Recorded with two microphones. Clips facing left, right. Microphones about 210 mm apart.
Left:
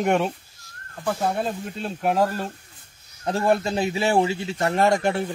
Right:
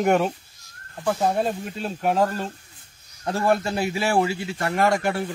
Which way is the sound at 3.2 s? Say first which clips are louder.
Left 1 dB; 15° left (ahead or behind).